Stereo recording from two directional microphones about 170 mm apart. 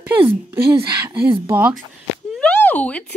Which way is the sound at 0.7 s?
25° right (ahead or behind).